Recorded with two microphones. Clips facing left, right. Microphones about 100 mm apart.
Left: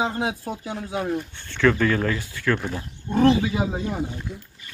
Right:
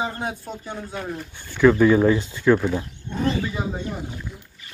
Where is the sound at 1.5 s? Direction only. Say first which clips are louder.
Right 5 dB; 10° right (ahead or behind).